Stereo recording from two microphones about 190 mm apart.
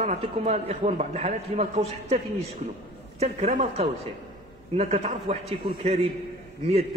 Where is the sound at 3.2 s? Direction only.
35° right (ahead or behind).